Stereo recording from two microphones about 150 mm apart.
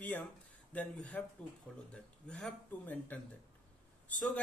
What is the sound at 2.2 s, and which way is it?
A man's voice, 5° left (ahead or behind).